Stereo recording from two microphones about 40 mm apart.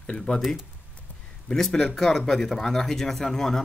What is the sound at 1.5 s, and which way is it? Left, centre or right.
Speech, centre.